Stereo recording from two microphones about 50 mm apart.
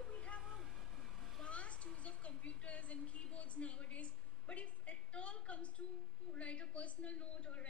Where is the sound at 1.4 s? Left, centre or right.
Left.